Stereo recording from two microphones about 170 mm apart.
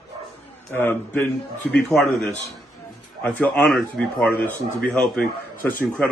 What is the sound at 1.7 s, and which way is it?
Speech, centre (ahead or behind).